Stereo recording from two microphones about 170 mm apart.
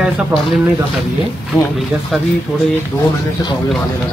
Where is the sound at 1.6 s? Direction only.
Centre (ahead or behind).